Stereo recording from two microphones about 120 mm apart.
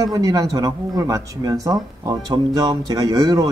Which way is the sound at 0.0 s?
30° right (ahead or behind).